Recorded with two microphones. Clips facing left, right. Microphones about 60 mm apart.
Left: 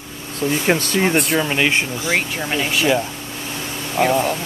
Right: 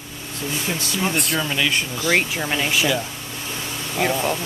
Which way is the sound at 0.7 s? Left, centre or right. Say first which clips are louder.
Left 7 dB; left.